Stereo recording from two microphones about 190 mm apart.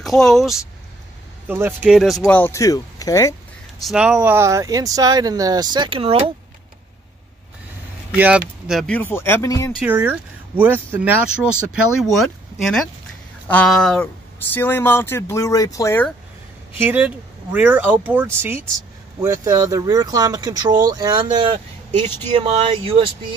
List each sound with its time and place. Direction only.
0.0 s speech: centre (ahead or behind)
1.5 s speech: 10° right (ahead or behind); by 3.3 s 15° left (ahead or behind)
3.8 s speech: centre (ahead or behind); by 6.3 s 30° right (ahead or behind)
8.2 s speech: 5° right (ahead or behind); by 9.7 s 15° left (ahead or behind)
9.8 s speech: 10° right (ahead or behind); by 16.1 s 15° left (ahead or behind)
16.7 s speech: 10° right (ahead or behind); by 23.1 s 25° right (ahead or behind)